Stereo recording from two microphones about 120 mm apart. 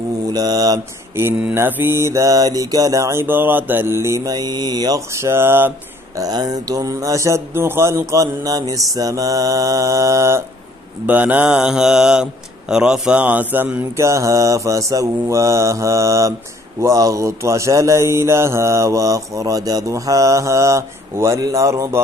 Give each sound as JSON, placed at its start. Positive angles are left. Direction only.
{"t": 0.3, "sound": "mantra", "side_deg": -30}
{"t": 1.1, "sound": "mantra", "side_deg": -20}
{"t": 6.1, "sound": "mantra", "side_deg": -30}
{"t": 11.1, "sound": "speech", "side_deg": -15}
{"t": 16.8, "sound": "mantra", "side_deg": -25}